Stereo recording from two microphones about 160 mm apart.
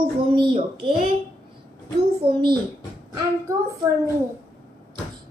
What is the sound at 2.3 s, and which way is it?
Speech, 30° right (ahead or behind).